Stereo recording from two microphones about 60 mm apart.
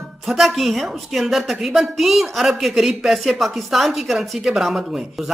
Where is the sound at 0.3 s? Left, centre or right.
Centre.